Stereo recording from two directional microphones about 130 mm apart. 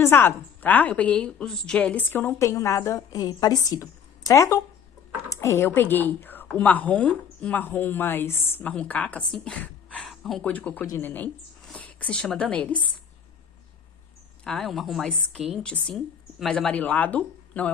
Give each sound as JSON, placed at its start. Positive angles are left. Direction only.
{"t": 0.0, "sound": "a woman's voice", "side_deg": 15}
{"t": 14.4, "sound": "speech", "side_deg": 5}